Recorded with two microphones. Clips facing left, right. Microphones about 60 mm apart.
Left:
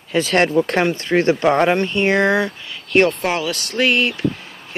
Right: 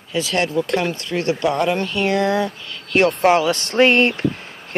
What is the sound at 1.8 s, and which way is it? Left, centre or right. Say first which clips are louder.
Speech: left 2 dB; left.